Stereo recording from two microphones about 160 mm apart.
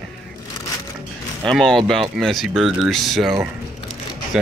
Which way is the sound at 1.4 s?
5° left (ahead or behind).